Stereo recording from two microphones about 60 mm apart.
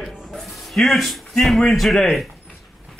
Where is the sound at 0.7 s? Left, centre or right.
Centre.